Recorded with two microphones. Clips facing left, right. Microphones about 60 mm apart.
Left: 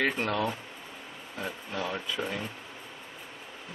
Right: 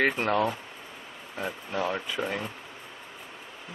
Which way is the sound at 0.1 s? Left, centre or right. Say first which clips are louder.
Right 4 dB; centre.